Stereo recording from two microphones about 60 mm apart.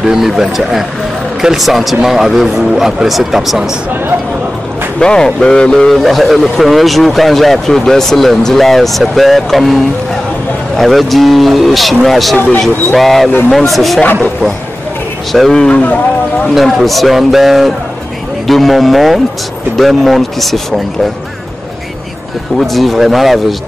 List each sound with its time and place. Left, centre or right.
0.0 s speech: centre
4.9 s a man's voice: centre
5.9 s speech: centre
10.8 s speech: centre
15.5 s a man's voice: centre
16.5 s speech: centre
22.6 s speech: centre